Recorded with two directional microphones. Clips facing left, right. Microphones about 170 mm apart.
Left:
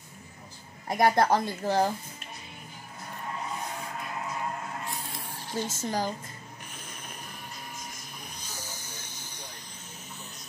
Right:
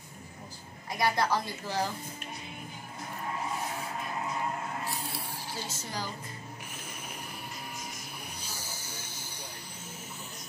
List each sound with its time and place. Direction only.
0.8 s a woman's voice: 50° left (ahead or behind)
5.0 s vehicle: 10° right (ahead or behind)
5.7 s a woman's voice: 50° left (ahead or behind)
6.7 s a sound: 10° right (ahead or behind)
8.4 s hiss: 10° right (ahead or behind)